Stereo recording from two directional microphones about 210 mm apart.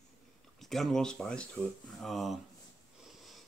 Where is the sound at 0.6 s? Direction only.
Centre (ahead or behind).